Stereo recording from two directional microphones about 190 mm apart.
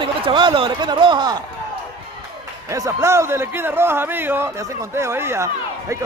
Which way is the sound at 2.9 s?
15° right (ahead or behind).